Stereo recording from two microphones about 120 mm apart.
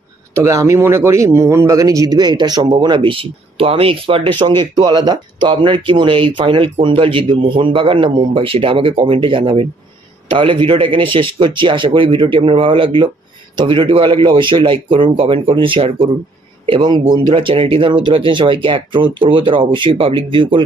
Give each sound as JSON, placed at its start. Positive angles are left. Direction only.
{"t": 0.3, "sound": "speech", "side_deg": -25}